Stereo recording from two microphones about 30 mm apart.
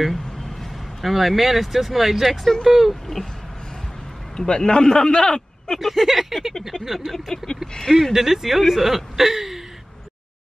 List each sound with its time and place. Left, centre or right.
0.1 s vehicle: centre
1.0 s speech: centre
2.2 s vehicle: centre
2.7 s speech: centre
4.4 s a man's voice: left
5.2 s a sound: centre
5.8 s speech: centre
7.2 s vehicle: centre
8.1 s speech: centre